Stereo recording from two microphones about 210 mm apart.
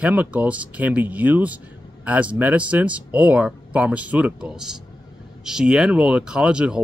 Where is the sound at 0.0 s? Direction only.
5° right (ahead or behind).